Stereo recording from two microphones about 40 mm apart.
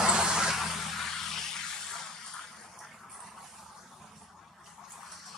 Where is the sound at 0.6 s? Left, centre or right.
Centre.